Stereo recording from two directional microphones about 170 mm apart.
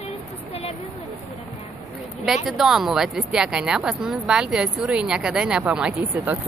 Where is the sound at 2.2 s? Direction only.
Centre (ahead or behind).